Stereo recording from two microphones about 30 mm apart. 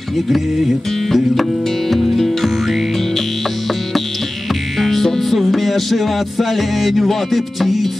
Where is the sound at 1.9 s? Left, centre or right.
Centre.